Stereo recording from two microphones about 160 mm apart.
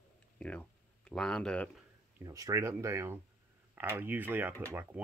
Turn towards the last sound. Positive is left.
turn(degrees=-10)  # may be behind; listen again after turning